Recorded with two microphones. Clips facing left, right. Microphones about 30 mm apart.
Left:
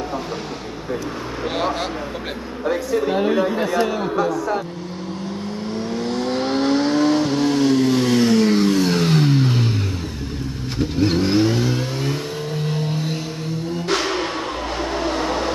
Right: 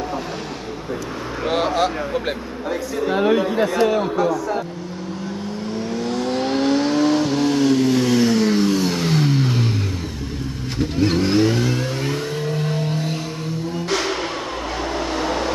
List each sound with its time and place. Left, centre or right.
1.4 s vehicle: centre
3.1 s speech: centre
4.1 s speech: centre
5.9 s vehicle: centre
10.8 s vehicle: centre
13.8 s music: centre
15.0 s train: centre